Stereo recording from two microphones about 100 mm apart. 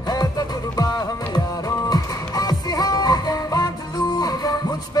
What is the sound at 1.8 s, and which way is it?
Music, 40° left (ahead or behind).